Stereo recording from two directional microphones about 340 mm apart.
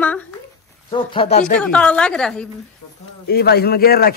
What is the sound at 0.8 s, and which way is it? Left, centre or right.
Speech, centre.